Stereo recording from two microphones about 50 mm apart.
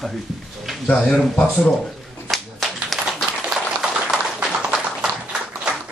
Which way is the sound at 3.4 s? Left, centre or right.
Centre.